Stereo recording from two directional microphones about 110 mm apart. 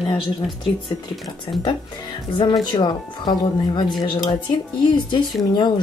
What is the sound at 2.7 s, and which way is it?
Speech, 45° left (ahead or behind).